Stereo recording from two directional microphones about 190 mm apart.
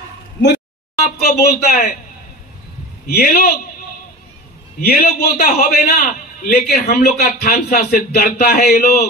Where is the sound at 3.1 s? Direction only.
55° left (ahead or behind).